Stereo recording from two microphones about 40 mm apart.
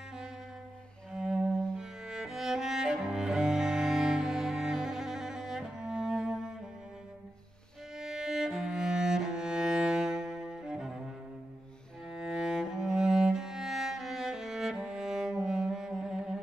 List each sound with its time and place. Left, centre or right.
1.1 s cello: centre
8.0 s music: centre
12.1 s cello: centre